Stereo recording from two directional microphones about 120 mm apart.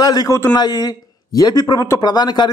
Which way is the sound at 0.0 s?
35° left (ahead or behind).